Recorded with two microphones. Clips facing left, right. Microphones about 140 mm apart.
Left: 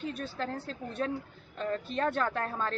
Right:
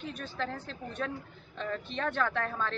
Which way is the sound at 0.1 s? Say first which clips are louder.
Left 1 dB; 40° left (ahead or behind).